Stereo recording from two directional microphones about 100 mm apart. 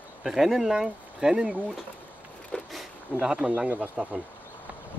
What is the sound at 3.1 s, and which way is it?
Speech, 15° right (ahead or behind).